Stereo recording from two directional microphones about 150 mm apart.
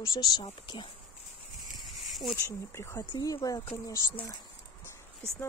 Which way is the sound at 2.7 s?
15° left (ahead or behind).